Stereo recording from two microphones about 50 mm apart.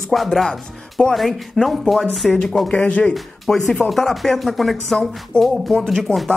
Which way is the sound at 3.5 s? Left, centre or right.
Centre.